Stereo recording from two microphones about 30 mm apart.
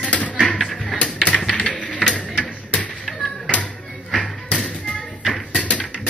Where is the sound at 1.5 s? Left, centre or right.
Left.